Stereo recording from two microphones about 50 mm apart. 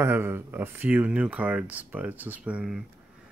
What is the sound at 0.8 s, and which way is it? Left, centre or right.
Speech, right.